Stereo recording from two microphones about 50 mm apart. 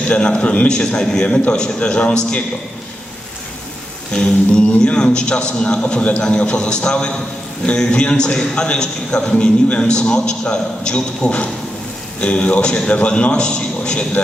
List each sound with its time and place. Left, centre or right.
0.1 s a man's voice: left
4.1 s a man's voice: left